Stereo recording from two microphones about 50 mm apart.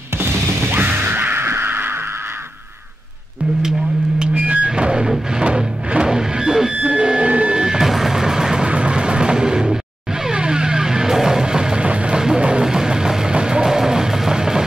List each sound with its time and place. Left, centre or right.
0.2 s music: right
4.4 s music: right
4.6 s music: centre
6.7 s a sound: right
7.5 s music: centre
8.6 s vehicle: right
12.2 s music: centre